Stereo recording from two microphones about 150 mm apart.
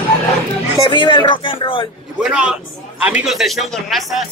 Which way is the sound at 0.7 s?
35° left (ahead or behind).